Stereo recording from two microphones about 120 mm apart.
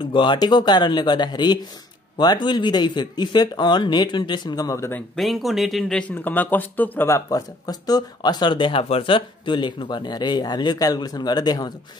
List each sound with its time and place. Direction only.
0.0 s speech: 40° left (ahead or behind); by 5.0 s 20° left (ahead or behind)
5.1 s speech: centre (ahead or behind); by 11.7 s 35° left (ahead or behind)